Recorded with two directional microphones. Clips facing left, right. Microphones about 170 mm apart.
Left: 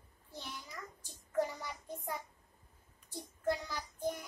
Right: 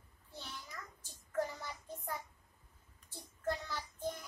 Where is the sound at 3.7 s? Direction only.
15° left (ahead or behind).